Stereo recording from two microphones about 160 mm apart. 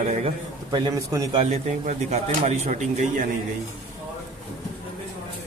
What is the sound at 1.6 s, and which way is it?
Speech, 45° right (ahead or behind).